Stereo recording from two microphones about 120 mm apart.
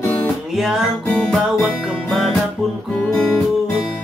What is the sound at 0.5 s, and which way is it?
Music, centre (ahead or behind).